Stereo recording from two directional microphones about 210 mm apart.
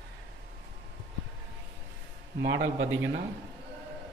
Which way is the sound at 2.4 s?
60° right (ahead or behind).